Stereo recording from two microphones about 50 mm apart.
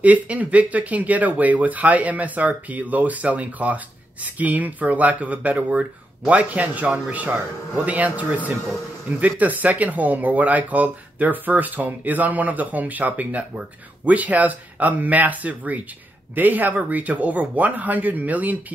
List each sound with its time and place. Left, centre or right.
0.0 s speech: right